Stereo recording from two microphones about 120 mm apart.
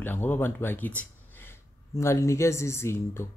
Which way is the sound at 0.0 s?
15° left (ahead or behind).